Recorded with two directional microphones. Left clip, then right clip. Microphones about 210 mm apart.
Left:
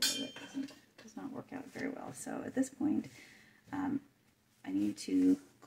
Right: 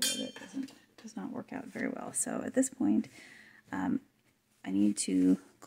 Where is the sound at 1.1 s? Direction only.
55° right (ahead or behind).